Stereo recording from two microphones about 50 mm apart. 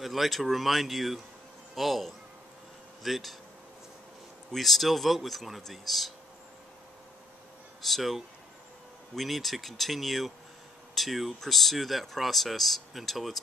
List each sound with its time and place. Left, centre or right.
0.0 s speech: centre
4.5 s speech: centre
7.8 s speech: centre